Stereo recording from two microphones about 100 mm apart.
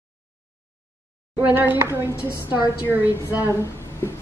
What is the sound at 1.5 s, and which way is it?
Speech, 20° right (ahead or behind).